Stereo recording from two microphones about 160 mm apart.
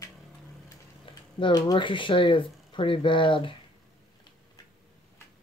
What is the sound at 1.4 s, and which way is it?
Speech, 30° left (ahead or behind).